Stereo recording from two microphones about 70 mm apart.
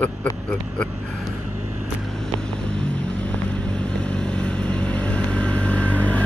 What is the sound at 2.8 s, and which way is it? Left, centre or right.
Vehicle, centre.